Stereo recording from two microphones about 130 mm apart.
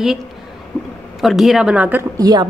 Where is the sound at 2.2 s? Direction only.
30° right (ahead or behind).